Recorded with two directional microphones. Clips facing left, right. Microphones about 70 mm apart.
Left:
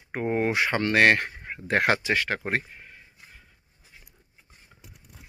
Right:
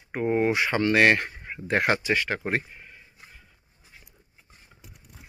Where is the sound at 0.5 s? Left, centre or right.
Left.